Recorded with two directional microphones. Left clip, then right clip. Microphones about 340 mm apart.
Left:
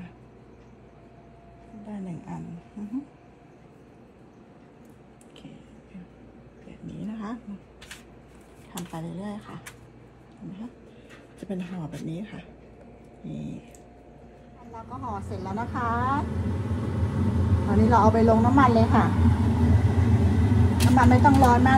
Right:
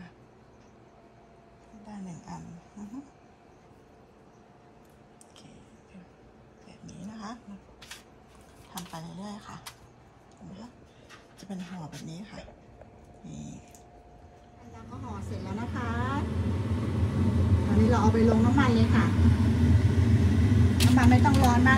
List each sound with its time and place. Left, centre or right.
8.7 s speech: centre
12.1 s a man's voice: right
15.4 s vehicle: centre